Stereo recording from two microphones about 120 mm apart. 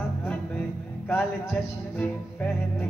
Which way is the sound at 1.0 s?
15° left (ahead or behind).